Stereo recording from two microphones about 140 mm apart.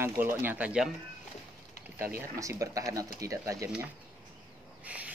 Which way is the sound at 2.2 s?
20° right (ahead or behind).